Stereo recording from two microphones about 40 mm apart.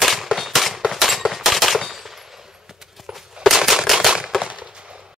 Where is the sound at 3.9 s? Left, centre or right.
Centre.